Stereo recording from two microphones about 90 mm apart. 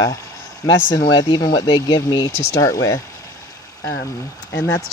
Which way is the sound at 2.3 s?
40° left (ahead or behind).